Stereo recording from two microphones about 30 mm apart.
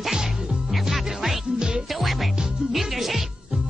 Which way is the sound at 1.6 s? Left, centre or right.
Right.